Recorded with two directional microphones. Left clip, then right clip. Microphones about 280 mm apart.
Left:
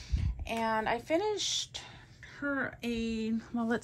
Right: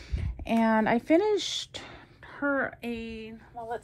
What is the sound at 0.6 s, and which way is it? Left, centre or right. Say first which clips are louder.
Speech: right 5 dB; right.